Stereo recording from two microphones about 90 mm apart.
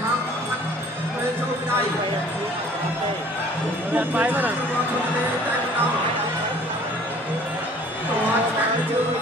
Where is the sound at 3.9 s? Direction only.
20° right (ahead or behind).